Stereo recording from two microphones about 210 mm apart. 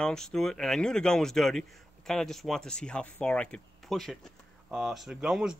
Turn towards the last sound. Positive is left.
turn(degrees=-5)  # may be behind; listen again after turning